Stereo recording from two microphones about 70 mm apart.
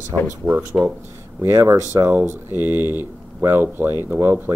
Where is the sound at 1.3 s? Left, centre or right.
Right.